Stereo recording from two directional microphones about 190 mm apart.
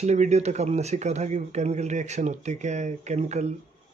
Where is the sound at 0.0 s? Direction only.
35° right (ahead or behind).